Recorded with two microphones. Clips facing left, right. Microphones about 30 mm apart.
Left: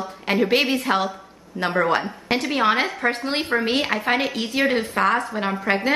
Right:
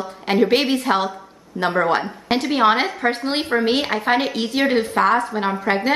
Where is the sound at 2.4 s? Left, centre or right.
Centre.